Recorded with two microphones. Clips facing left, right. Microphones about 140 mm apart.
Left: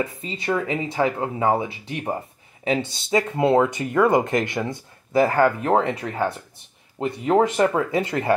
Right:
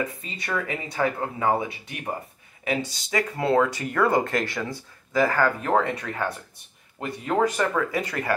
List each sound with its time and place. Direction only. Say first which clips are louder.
0.0 s speech: left 4 dB; 25° left (ahead or behind)